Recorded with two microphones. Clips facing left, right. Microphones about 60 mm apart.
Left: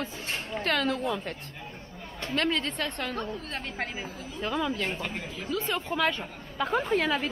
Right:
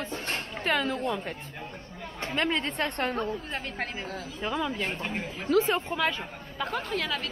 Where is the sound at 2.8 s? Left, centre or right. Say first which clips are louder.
Right 3 dB; right.